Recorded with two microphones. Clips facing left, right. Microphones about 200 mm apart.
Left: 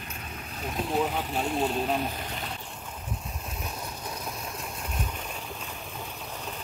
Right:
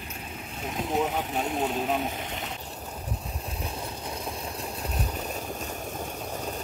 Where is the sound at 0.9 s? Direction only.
Centre (ahead or behind).